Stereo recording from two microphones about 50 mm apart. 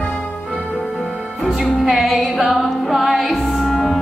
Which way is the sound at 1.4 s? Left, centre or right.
Centre.